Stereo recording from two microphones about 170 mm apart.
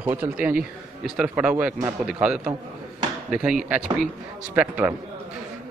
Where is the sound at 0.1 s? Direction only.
10° right (ahead or behind).